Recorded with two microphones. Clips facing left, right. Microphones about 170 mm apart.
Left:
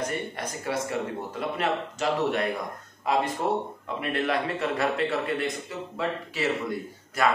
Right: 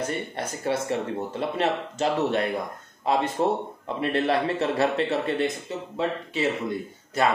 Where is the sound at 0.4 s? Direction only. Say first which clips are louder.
Right 3 dB; 25° right (ahead or behind).